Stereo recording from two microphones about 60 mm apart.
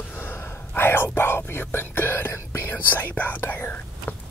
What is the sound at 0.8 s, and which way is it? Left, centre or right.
Whispering, left.